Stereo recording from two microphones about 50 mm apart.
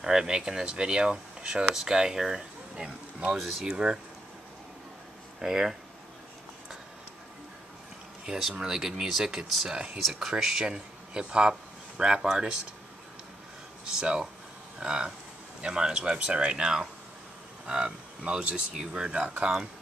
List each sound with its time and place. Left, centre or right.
0.0 s speech: centre
3.3 s speech: centre
3.7 s speech: centre
5.4 s speech: centre
8.5 s speech: centre
13.9 s speech: centre